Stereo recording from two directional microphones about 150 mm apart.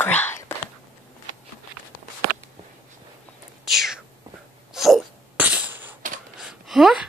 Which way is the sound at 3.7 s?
5° right (ahead or behind).